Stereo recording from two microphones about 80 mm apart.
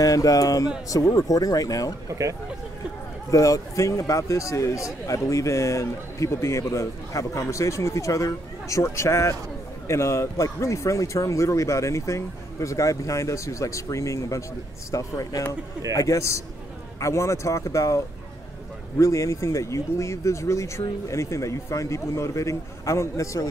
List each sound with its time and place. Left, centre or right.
0.0 s speech: left
2.0 s speech: right
3.3 s speech: left